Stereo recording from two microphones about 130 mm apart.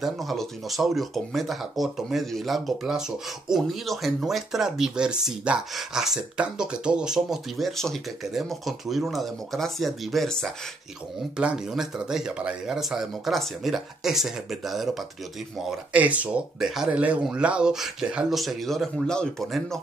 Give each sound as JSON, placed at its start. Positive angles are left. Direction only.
{"t": 0.0, "sound": "speech", "side_deg": 0}